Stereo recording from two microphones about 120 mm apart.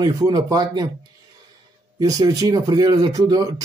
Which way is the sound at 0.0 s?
30° right (ahead or behind).